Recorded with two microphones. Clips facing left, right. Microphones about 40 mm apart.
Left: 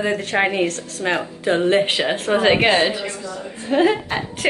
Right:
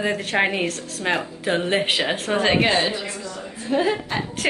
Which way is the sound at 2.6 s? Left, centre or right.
Left.